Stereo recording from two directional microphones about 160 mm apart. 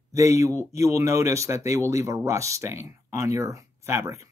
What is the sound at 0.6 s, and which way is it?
Speech, 20° right (ahead or behind).